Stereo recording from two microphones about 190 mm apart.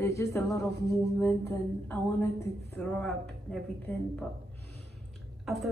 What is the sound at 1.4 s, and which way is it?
A woman's voice, 15° left (ahead or behind).